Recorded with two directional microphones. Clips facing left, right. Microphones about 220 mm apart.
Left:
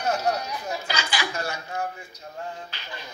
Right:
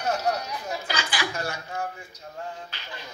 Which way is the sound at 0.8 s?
50° right (ahead or behind).